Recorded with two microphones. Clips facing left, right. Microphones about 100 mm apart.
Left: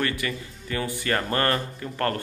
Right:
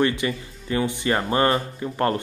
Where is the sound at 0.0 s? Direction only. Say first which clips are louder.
Right 6 dB; 25° right (ahead or behind).